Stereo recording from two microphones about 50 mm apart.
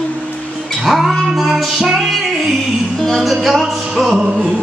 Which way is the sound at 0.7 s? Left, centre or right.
Centre.